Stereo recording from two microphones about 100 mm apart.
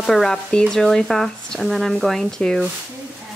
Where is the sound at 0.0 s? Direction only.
5° left (ahead or behind).